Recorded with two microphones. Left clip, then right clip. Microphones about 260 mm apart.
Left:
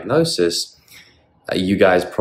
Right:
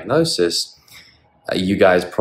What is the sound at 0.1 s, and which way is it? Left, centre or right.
Speech, centre.